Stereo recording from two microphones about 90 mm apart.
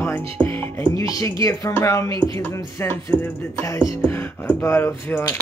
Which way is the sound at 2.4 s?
25° left (ahead or behind).